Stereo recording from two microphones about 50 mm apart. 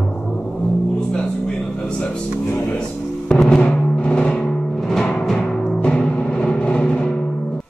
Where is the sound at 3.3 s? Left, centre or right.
Left.